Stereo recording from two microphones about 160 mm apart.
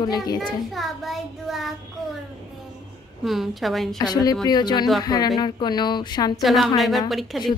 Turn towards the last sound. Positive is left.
turn(degrees=0)  # may be behind; listen again after turning